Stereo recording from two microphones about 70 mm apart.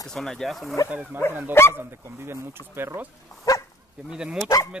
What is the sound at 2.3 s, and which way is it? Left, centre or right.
Speech, right.